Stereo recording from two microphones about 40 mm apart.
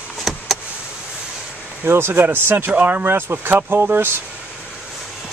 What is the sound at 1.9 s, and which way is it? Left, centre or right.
Speech, right.